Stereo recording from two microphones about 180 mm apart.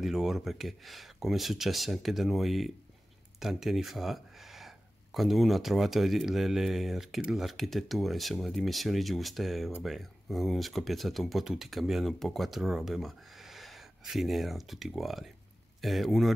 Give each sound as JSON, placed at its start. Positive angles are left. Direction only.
{"t": 0.0, "sound": "speech", "side_deg": 0}